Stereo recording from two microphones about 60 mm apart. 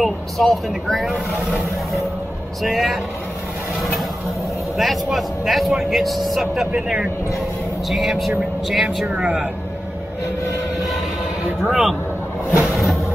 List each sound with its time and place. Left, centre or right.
0.0 s a man's voice: centre
2.6 s a man's voice: centre
4.7 s a man's voice: centre
7.9 s a man's voice: centre
9.1 s speech: centre
11.6 s a man's voice: centre
12.7 s a sound: centre